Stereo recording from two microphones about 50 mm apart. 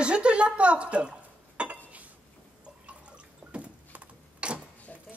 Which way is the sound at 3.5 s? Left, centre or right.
Right.